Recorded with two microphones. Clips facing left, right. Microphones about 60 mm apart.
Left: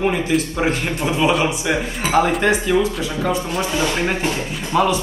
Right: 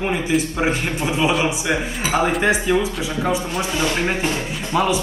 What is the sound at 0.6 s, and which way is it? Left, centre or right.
Speech, centre.